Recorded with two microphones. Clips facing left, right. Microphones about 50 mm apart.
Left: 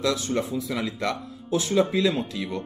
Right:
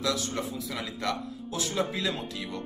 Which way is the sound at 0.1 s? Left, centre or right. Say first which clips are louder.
Left 5 dB; left.